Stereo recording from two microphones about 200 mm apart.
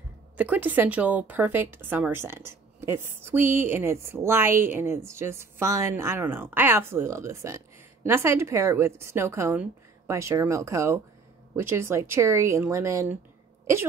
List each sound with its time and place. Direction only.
0.4 s speech: 10° right (ahead or behind)